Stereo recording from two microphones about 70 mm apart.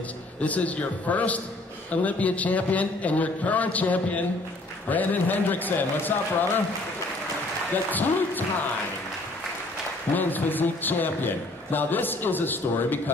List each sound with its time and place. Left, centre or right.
0.4 s speech: left
10.1 s speech: left